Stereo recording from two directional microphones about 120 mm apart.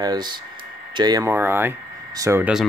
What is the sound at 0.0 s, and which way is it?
Speech, 35° right (ahead or behind).